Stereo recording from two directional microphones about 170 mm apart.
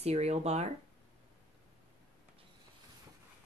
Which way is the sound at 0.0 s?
40° right (ahead or behind).